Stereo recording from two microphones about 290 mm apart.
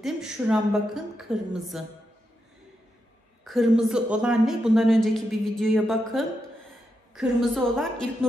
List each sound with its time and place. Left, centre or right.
0.0 s speech: centre
3.4 s speech: centre